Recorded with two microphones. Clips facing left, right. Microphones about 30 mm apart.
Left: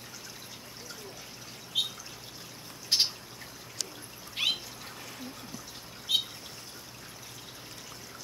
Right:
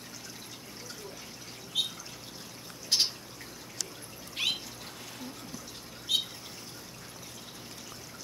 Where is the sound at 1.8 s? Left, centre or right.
Centre.